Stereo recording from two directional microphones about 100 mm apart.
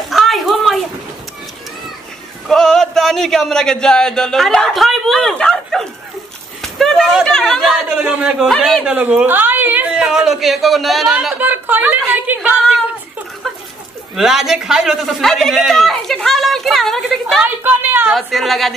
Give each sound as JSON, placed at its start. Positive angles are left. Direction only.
{"t": 0.1, "sound": "a sound", "side_deg": 0}
{"t": 2.4, "sound": "a man's voice", "side_deg": 5}
{"t": 6.6, "sound": "a sound", "side_deg": 5}
{"t": 7.2, "sound": "chatter", "side_deg": 5}
{"t": 8.0, "sound": "a man's voice", "side_deg": -15}
{"t": 8.5, "sound": "a man's voice", "side_deg": 5}
{"t": 8.8, "sound": "speech", "side_deg": -15}
{"t": 11.3, "sound": "speech", "side_deg": -15}
{"t": 12.3, "sound": "a sound", "side_deg": -15}
{"t": 14.1, "sound": "a man's voice", "side_deg": -5}
{"t": 17.4, "sound": "speech", "side_deg": -15}
{"t": 18.1, "sound": "a man's voice", "side_deg": 0}